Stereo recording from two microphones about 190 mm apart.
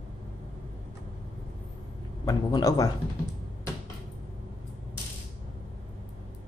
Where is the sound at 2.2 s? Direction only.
20° left (ahead or behind).